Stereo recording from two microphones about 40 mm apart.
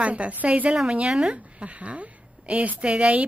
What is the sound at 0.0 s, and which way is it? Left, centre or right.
Speech, right.